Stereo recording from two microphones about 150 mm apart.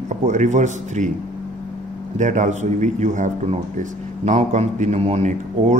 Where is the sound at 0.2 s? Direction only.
55° right (ahead or behind).